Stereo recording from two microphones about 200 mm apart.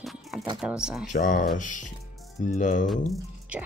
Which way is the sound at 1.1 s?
40° left (ahead or behind).